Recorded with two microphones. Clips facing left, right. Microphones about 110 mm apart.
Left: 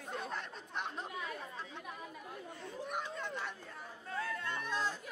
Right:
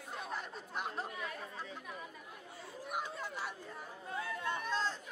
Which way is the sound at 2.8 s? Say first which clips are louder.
Right 1 dB; 5° right (ahead or behind).